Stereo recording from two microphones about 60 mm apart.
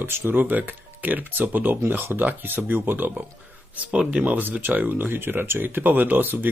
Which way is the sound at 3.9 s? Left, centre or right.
Centre.